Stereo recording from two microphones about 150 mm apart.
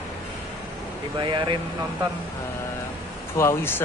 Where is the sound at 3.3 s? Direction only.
15° left (ahead or behind).